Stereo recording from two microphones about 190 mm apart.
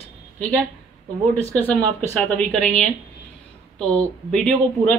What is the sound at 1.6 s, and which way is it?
Speech, 10° left (ahead or behind).